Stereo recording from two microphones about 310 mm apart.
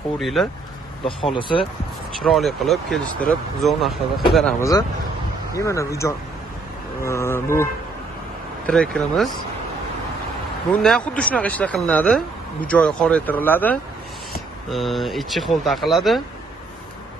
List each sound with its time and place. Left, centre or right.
0.2 s speech: centre
1.0 s speech: centre
2.1 s speech: centre
10.7 s speech: centre